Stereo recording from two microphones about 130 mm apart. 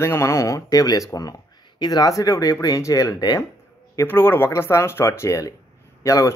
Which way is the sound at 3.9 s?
15° left (ahead or behind).